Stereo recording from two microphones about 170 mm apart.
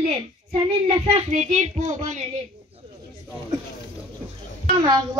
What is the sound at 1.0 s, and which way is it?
A child's voice, 45° right (ahead or behind).